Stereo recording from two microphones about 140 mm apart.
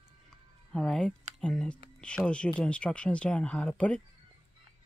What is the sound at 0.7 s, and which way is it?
Speech, 5° left (ahead or behind).